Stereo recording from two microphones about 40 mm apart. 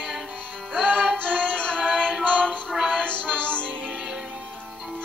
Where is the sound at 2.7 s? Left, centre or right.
Centre.